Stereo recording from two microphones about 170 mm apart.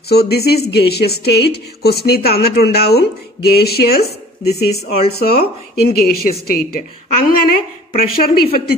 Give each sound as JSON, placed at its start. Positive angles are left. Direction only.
{"t": 0.1, "sound": "a woman's voice", "side_deg": 70}
{"t": 4.0, "sound": "speech", "side_deg": 40}
{"t": 5.2, "sound": "a woman's voice", "side_deg": 65}